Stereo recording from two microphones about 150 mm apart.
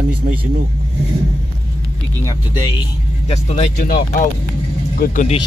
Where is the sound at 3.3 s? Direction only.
45° left (ahead or behind).